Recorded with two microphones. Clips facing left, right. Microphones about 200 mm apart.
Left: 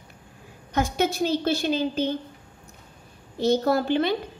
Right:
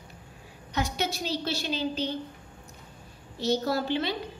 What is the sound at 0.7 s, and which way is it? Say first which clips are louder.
A woman's voice: left 6 dB; 50° left (ahead or behind).